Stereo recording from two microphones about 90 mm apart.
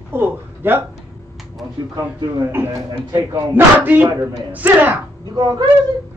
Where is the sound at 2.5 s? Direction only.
25° right (ahead or behind).